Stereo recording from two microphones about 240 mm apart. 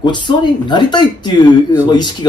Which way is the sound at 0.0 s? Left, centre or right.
Centre.